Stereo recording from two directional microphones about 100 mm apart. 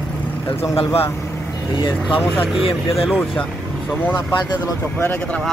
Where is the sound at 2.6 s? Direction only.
70° left (ahead or behind).